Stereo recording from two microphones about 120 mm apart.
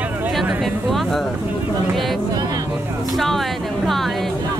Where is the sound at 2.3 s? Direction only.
35° right (ahead or behind).